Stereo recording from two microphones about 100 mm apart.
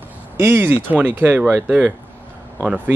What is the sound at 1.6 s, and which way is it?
Speech, 10° right (ahead or behind).